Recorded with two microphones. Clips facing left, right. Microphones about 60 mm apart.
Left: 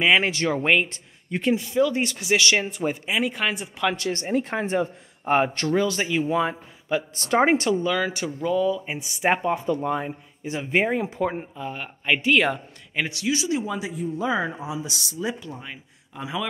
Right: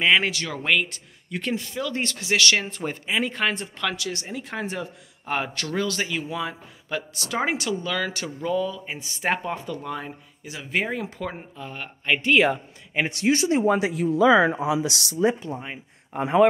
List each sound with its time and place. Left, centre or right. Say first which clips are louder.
0.2 s speech: left 4 dB; left
1.5 s speech: left 8 dB; centre
3.9 s speech: left 7 dB; left
5.7 s speech: left 4 dB; centre
6.2 s speech: left 7 dB; left
6.9 s speech: left 5 dB; left
7.2 s speech: left 7 dB; left
7.8 s speech: left 3 dB; centre
11.5 s speech: left 3 dB; centre
13.0 s speech: right 4 dB; right
13.7 s speech: right 7 dB; right
15.1 s speech: right 8 dB; right
16.1 s speech: right 11 dB; right